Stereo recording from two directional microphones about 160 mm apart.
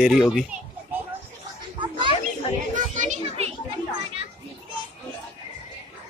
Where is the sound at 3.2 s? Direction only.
40° right (ahead or behind).